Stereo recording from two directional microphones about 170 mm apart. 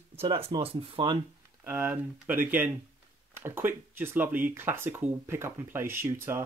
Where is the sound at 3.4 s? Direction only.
15° right (ahead or behind).